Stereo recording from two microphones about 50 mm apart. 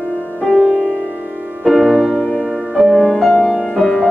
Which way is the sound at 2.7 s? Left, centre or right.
Centre.